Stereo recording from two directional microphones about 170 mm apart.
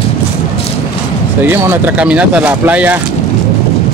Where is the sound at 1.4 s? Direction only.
15° right (ahead or behind).